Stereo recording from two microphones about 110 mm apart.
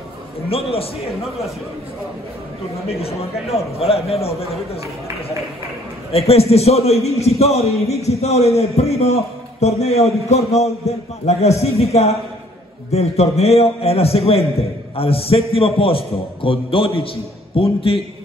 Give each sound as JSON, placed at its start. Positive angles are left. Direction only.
{"t": 0.5, "sound": "a man's voice", "side_deg": 60}
{"t": 2.9, "sound": "a man's voice", "side_deg": 65}
{"t": 6.1, "sound": "a man's voice", "side_deg": 65}